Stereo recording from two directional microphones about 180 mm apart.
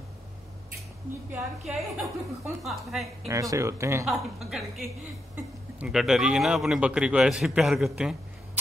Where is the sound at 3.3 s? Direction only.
20° right (ahead or behind).